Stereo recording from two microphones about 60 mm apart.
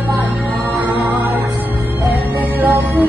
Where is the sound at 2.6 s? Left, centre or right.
Right.